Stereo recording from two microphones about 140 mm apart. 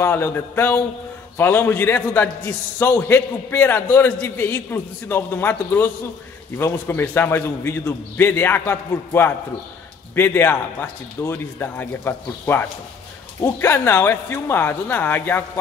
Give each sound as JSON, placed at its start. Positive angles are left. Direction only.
{"t": 0.0, "sound": "a man's voice", "side_deg": 15}